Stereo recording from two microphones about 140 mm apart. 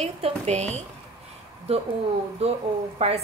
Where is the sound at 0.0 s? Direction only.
50° right (ahead or behind).